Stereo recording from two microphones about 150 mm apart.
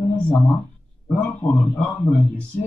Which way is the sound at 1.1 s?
5° left (ahead or behind).